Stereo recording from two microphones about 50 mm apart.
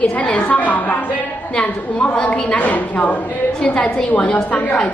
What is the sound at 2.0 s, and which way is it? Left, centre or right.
A woman's voice, left.